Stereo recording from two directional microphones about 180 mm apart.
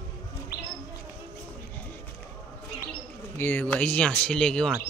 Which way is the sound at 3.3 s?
10° left (ahead or behind).